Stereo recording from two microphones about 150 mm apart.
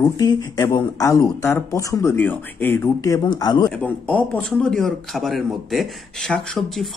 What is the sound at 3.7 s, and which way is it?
Speech, 10° left (ahead or behind).